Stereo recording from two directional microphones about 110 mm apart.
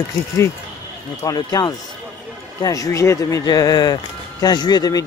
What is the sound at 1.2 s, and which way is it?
Speech, 35° left (ahead or behind).